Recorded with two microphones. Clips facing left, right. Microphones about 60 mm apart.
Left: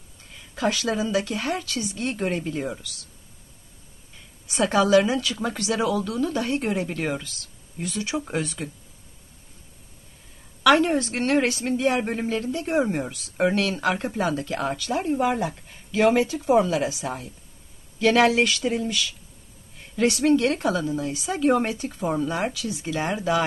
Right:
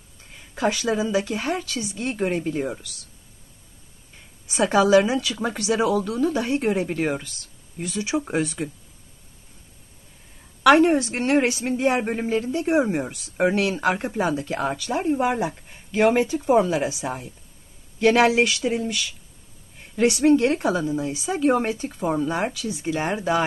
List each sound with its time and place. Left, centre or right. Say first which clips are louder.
0.3 s a sound: right 2 dB; right
0.7 s speech: right 2 dB; centre
4.5 s speech: right 2 dB; centre
10.6 s speech: right 3 dB; centre